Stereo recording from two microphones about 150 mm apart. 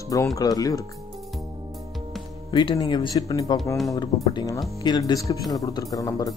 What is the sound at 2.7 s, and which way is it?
Speech, 30° left (ahead or behind).